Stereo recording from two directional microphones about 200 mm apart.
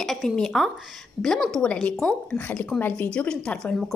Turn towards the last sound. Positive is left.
turn(degrees=0)  # may be behind; listen again after turning